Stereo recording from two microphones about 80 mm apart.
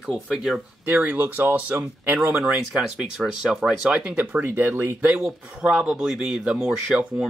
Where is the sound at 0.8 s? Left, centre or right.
Right.